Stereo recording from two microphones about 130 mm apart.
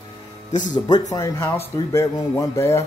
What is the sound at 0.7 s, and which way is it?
Speech, 35° left (ahead or behind).